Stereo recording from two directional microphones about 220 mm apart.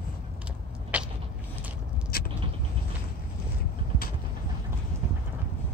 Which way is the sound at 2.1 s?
45° left (ahead or behind).